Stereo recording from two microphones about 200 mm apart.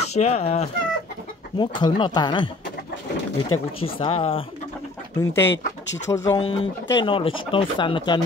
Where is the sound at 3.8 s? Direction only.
30° left (ahead or behind).